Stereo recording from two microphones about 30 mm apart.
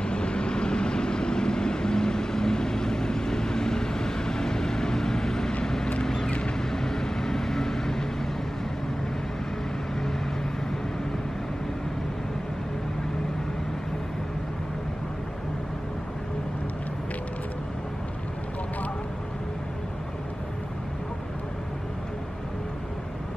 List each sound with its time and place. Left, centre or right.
0.0 s vehicle: left; by 8.1 s centre